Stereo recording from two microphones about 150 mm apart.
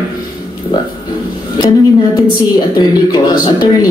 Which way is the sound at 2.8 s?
25° left (ahead or behind).